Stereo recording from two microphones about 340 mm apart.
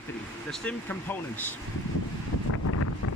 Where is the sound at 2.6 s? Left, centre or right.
Left.